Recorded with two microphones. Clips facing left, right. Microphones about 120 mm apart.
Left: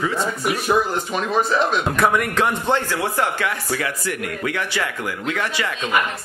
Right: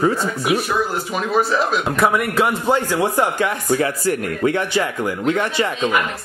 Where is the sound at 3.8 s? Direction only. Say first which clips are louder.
Right 6 dB; 35° right (ahead or behind).